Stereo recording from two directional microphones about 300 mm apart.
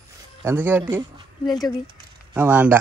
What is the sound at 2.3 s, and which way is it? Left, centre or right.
Speech, centre.